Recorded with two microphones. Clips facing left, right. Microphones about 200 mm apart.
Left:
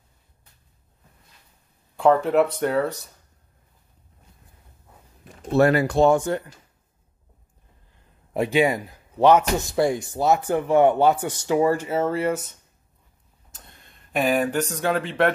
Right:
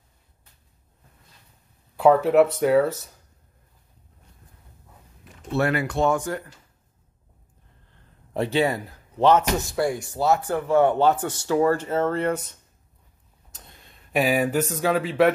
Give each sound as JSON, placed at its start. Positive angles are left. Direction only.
{"t": 2.0, "sound": "speech", "side_deg": -5}
{"t": 5.4, "sound": "speech", "side_deg": 40}
{"t": 8.3, "sound": "speech", "side_deg": 15}